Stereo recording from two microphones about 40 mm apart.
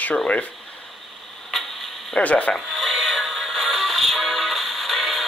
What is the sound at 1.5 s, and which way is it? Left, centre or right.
Tick-tock, centre.